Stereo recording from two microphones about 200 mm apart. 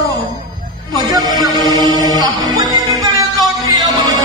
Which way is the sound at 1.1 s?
20° right (ahead or behind).